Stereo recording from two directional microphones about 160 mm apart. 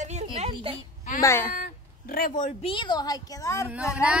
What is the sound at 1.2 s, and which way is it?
Speech, 15° left (ahead or behind).